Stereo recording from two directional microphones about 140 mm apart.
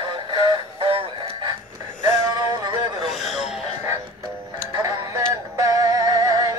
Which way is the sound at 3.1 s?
Centre (ahead or behind).